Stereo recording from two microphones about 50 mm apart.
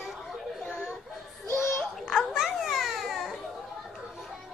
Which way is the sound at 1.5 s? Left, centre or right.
Left.